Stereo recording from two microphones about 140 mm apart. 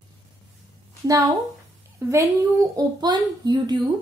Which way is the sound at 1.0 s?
25° right (ahead or behind).